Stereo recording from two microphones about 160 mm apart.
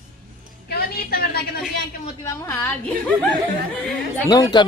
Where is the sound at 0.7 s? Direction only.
75° left (ahead or behind).